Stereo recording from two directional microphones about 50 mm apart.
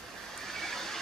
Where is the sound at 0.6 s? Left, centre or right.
Centre.